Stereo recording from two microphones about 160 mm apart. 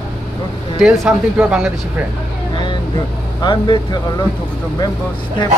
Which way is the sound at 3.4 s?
30° left (ahead or behind).